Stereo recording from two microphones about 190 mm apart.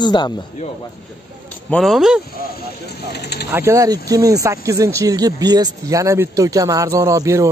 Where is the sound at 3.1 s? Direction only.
60° left (ahead or behind).